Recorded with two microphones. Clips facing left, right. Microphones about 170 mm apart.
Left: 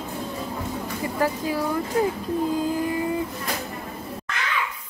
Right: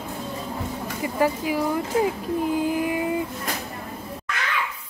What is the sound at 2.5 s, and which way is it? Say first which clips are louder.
Vehicle: right 1 dB; 15° right (ahead or behind).